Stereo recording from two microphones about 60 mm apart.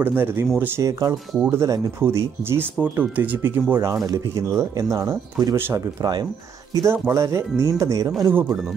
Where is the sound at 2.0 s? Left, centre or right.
Right.